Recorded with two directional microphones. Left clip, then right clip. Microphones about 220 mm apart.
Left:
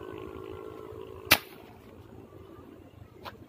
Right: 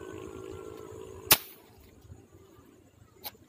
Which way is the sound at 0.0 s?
35° left (ahead or behind).